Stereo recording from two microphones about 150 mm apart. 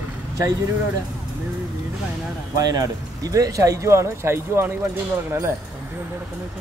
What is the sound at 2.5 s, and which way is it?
Speech, 25° right (ahead or behind).